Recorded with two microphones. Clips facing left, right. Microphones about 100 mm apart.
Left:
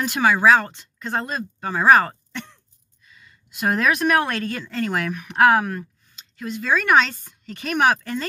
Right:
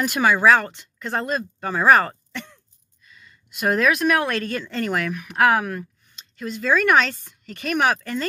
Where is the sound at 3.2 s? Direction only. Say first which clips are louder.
Left 1 dB; 20° left (ahead or behind).